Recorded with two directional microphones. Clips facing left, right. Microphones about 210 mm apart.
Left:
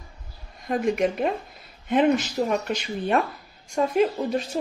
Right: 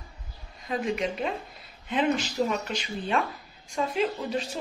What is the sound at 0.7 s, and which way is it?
Speech, 50° left (ahead or behind).